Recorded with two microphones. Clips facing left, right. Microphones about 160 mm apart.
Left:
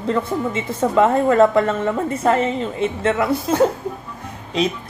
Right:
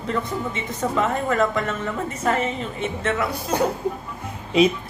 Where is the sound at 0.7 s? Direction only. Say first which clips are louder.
Left 7 dB; 30° left (ahead or behind).